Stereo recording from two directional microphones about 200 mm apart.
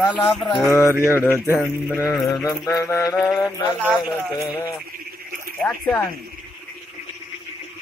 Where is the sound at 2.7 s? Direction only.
15° left (ahead or behind).